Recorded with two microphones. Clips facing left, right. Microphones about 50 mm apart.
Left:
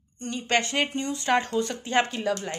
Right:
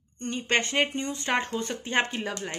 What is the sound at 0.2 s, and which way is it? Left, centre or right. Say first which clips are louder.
A woman's voice: left 1 dB; right.